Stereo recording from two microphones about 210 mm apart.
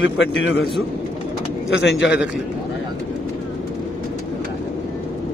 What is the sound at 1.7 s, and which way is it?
Speech, 55° left (ahead or behind).